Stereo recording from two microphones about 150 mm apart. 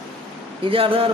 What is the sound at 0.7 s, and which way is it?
Speech, 35° right (ahead or behind).